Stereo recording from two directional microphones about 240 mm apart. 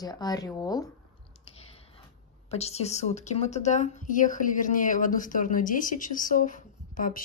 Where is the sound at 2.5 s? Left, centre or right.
Left.